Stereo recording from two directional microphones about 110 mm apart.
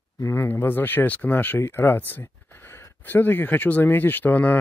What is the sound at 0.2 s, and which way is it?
Speech, 25° left (ahead or behind).